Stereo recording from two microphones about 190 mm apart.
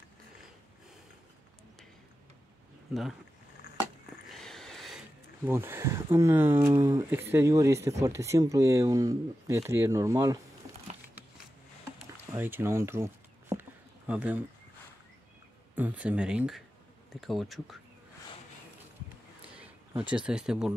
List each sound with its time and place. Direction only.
2.9 s speech: centre (ahead or behind)
4.3 s a sound: centre (ahead or behind)
5.4 s speech: 10° right (ahead or behind)
12.3 s a sound: 10° right (ahead or behind)
15.7 s speech: 10° right (ahead or behind)
20.2 s speech: 5° right (ahead or behind)